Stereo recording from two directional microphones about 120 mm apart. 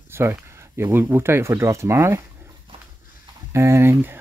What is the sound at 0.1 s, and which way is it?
Speech, 20° right (ahead or behind).